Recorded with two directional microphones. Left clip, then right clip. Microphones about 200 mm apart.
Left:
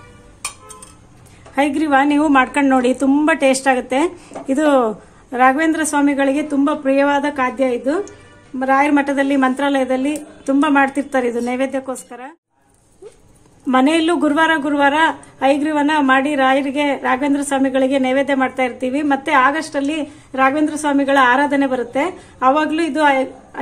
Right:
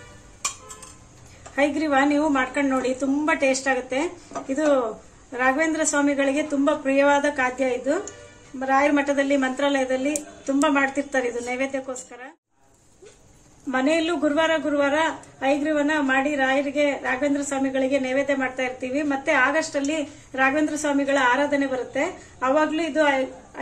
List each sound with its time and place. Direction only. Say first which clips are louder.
1.5 s speech: left 6 dB; 55° left (ahead or behind)
13.7 s speech: left 7 dB; 60° left (ahead or behind)